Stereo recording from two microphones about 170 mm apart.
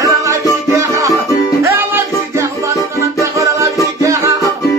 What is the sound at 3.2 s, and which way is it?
Music, 20° right (ahead or behind).